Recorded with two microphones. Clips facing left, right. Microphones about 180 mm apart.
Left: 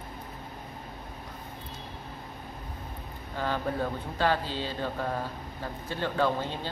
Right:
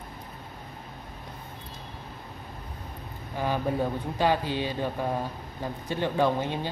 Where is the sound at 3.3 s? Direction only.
15° right (ahead or behind).